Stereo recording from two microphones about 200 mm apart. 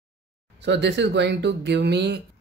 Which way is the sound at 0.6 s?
60° right (ahead or behind).